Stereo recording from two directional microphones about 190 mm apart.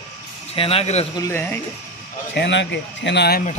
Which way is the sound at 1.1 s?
15° left (ahead or behind).